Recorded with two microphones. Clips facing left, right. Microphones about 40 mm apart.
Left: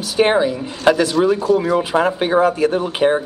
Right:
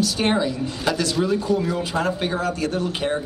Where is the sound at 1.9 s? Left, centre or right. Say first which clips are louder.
Left 7 dB; left.